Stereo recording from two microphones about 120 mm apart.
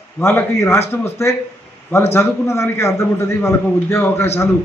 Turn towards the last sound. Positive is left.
turn(degrees=20)  # may be behind; listen again after turning